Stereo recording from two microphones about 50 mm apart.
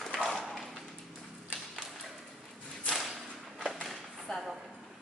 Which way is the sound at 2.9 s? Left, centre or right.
Centre.